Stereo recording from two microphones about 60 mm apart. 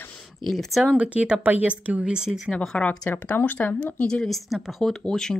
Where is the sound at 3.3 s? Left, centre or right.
Left.